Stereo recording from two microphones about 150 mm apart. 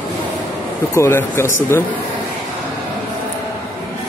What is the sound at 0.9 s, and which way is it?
Speech, 15° left (ahead or behind).